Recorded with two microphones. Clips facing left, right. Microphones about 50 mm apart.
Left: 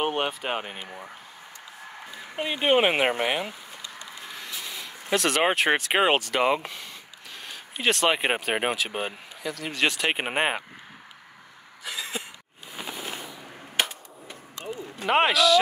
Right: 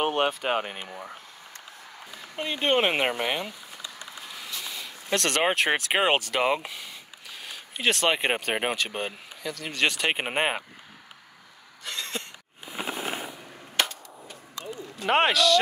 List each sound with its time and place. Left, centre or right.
0.0 s speech: centre
2.3 s speech: centre
11.8 s throat clearing: centre
14.2 s a sound: left
15.0 s speech: centre